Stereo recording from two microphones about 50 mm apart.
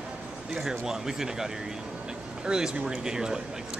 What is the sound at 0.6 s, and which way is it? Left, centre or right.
Speech, centre.